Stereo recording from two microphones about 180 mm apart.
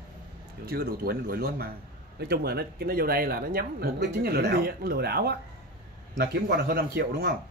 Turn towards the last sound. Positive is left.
turn(degrees=-65)  # may be behind; listen again after turning